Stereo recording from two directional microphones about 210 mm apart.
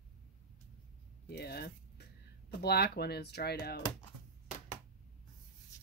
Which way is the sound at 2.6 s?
50° left (ahead or behind).